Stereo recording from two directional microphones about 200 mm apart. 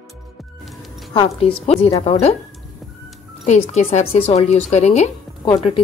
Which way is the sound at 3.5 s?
35° left (ahead or behind).